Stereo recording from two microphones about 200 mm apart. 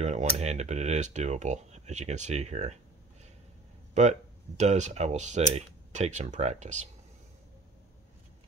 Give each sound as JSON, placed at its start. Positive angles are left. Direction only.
{"t": 0.0, "sound": "speech", "side_deg": -35}
{"t": 4.6, "sound": "speech", "side_deg": -35}